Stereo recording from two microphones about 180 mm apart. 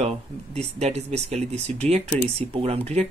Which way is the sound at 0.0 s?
35° right (ahead or behind).